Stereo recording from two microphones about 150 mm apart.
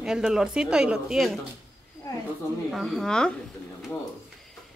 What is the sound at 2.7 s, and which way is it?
Speech, centre (ahead or behind).